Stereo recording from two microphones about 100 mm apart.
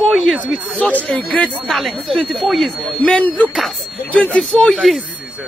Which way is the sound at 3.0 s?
10° left (ahead or behind).